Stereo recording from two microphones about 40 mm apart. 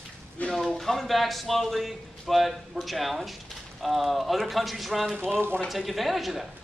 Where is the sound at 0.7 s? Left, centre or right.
Centre.